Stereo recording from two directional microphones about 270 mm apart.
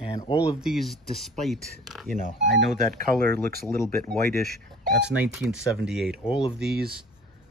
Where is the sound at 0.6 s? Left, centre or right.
Centre.